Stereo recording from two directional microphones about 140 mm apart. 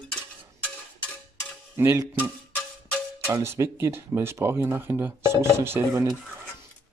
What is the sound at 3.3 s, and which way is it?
Speech, 20° right (ahead or behind).